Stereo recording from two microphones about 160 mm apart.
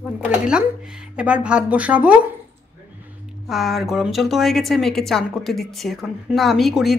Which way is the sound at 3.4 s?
Centre (ahead or behind).